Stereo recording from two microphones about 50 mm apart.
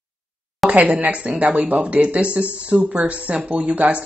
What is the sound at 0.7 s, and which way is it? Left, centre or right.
Speech, right.